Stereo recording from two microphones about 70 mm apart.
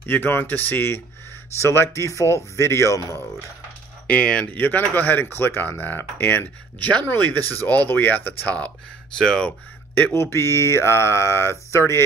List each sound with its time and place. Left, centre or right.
0.0 s speech: left
4.1 s speech: centre
4.5 s speech: left
9.2 s speech: centre
10.1 s speech: left